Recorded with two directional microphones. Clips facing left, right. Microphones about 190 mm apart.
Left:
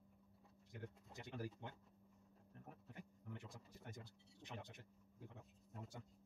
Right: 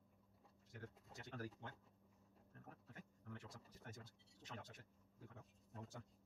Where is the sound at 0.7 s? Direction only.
15° left (ahead or behind).